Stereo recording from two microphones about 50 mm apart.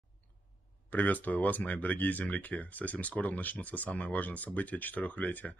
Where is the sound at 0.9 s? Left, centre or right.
Left.